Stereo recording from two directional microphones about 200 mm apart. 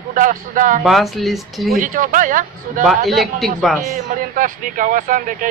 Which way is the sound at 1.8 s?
40° right (ahead or behind).